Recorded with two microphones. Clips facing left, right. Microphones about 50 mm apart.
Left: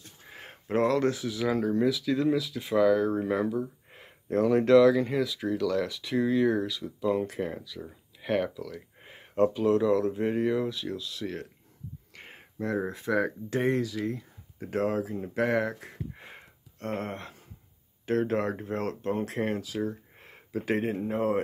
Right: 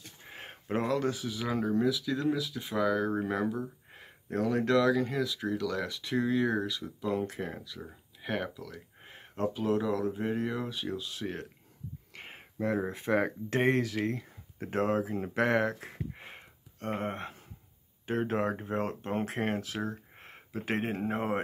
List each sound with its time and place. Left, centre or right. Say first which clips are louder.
0.3 s speech: left 3 dB; centre
3.5 s a sound: left 5 dB; centre
4.6 s speech: left 7 dB; centre
5.2 s speech: left 3 dB; centre
10.7 s speech: left 1 dB; centre
11.1 s speech: left 2 dB; right
12.5 s speech: left 1 dB; right
14.7 s speech: left 1 dB; right
15.9 s sniff: even; centre
18.0 s speech: left 3 dB; right
19.1 s speech: left 2 dB; right
20.2 s a sound: left 5 dB; right